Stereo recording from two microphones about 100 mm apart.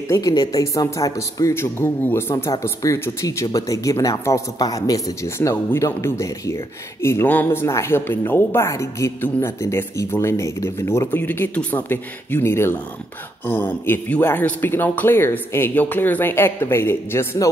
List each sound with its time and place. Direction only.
0.1 s speech: 40° left (ahead or behind)
2.3 s speech: 40° left (ahead or behind)